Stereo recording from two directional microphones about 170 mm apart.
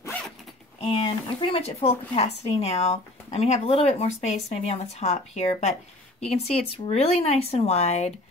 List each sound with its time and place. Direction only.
0.7 s a woman's voice: 35° left (ahead or behind)